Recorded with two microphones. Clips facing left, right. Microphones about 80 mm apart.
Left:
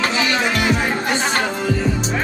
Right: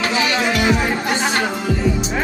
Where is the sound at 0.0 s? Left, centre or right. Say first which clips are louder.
Even; left.